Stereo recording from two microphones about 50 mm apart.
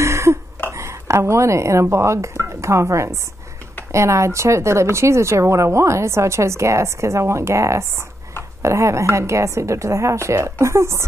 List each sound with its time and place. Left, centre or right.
0.0 s throat clearing: right
0.7 s speech: right